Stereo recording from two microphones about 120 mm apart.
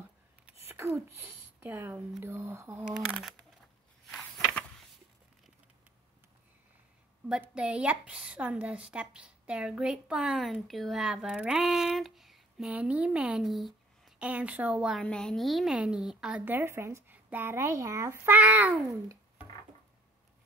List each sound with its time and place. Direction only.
0.5 s a sound: 20° right (ahead or behind)
1.6 s a woman's voice: 15° right (ahead or behind)
4.2 s a sound: 10° left (ahead or behind)
7.2 s a woman's voice: 10° right (ahead or behind)
14.2 s a woman's voice: 10° right (ahead or behind)
15.0 s a woman's voice: 5° left (ahead or behind); by 18.7 s 15° right (ahead or behind)